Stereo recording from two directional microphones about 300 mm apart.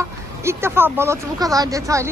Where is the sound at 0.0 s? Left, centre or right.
Centre.